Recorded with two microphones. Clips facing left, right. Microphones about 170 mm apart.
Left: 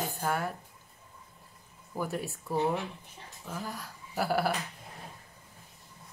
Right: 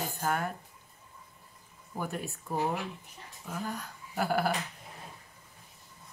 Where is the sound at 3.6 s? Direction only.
5° left (ahead or behind).